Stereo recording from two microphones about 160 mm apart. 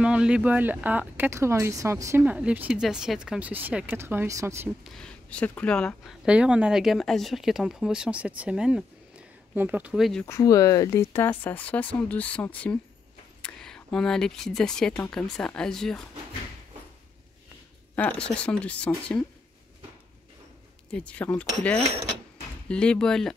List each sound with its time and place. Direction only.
0.0 s speech: 5° right (ahead or behind)
4.8 s speech: 5° left (ahead or behind)
6.2 s speech: 5° right (ahead or behind)
10.2 s speech: 20° left (ahead or behind); by 16.0 s 5° left (ahead or behind)
17.9 s a woman's voice: 10° left (ahead or behind)
20.9 s speech: 10° left (ahead or behind)
22.7 s speech: 5° left (ahead or behind)